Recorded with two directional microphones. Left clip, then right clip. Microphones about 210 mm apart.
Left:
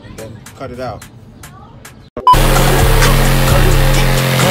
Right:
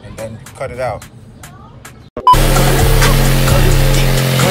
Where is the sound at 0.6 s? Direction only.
15° left (ahead or behind).